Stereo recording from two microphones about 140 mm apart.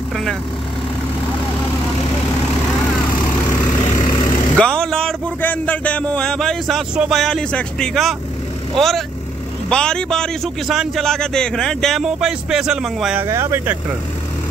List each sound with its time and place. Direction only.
4.6 s a sound: 5° left (ahead or behind)
7.0 s a man's voice: centre (ahead or behind)
13.2 s speech: 20° right (ahead or behind)